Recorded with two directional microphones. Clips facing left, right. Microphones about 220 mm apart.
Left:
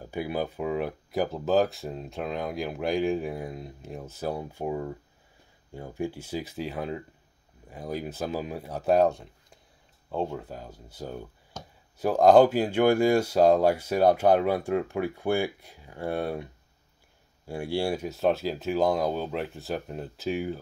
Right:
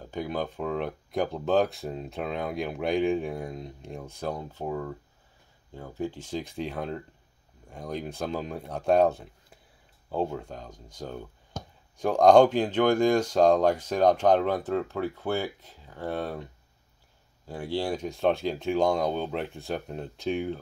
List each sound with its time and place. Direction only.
0.0 s speech: 10° left (ahead or behind)
11.6 s a sound: 55° right (ahead or behind)
12.0 s speech: 5° left (ahead or behind)
17.5 s speech: 10° left (ahead or behind)